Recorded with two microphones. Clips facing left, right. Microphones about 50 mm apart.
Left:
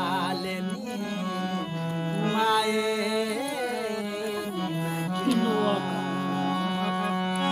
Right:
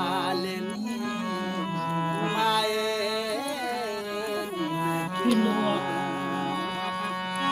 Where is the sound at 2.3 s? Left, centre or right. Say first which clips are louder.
Left 2 dB; centre.